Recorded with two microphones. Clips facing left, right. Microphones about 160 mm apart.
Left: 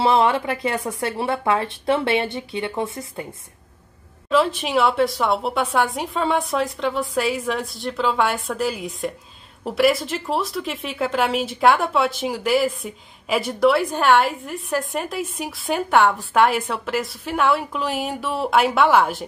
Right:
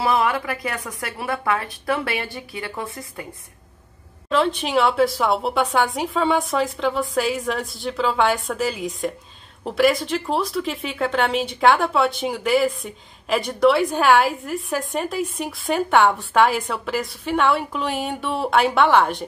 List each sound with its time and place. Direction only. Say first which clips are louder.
0.0 s a woman's voice: left 3 dB; 25° left (ahead or behind)
4.3 s speech: left 1 dB; centre (ahead or behind)